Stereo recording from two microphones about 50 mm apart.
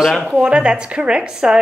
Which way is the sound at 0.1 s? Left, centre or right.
Centre.